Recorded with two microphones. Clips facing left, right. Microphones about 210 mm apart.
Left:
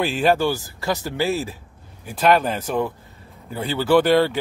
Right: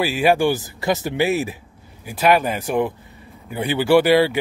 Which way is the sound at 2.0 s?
10° right (ahead or behind).